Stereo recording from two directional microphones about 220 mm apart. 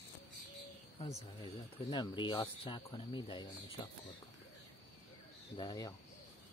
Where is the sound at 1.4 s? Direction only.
20° left (ahead or behind).